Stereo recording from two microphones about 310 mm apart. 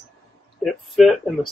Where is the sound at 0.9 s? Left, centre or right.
Centre.